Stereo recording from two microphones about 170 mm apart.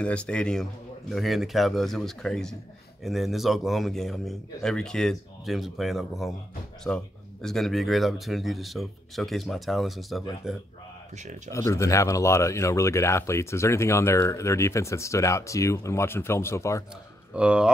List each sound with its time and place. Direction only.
0.0 s a man's voice: 5° left (ahead or behind)
11.5 s speech: 15° left (ahead or behind)
17.3 s speech: 5° right (ahead or behind)